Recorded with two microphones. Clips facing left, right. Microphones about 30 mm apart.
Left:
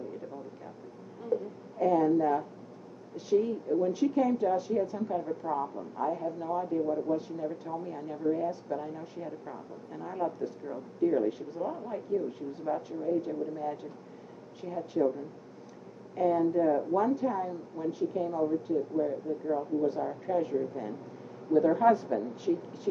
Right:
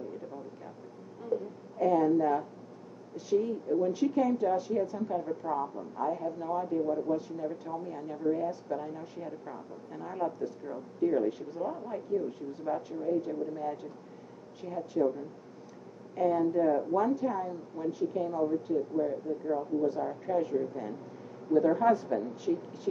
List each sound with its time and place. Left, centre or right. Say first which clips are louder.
1.2 s a sound: left 1 dB; centre
3.2 s a woman's voice: left 2 dB; centre
7.2 s speech: left 1 dB; centre
7.4 s a woman's voice: left 1 dB; centre
14.8 s a woman's voice: left 1 dB; centre